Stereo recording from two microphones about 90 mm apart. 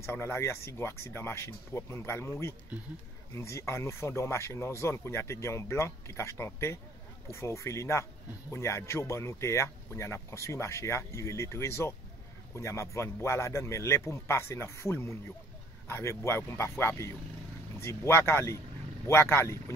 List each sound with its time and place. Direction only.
0.0 s speech: 30° left (ahead or behind)